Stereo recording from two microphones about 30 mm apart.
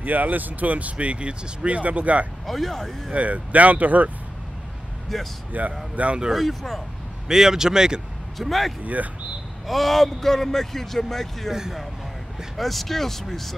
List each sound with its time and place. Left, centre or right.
0.0 s speech: right
0.9 s speech: right
1.8 s speech: right
2.4 s speech: centre
3.1 s speech: right
5.1 s speech: centre
5.5 s speech: right
6.0 s speech: right
6.3 s speech: centre
7.2 s speech: centre
8.4 s speech: centre
8.8 s speech: right
9.7 s speech: centre
12.5 s speech: centre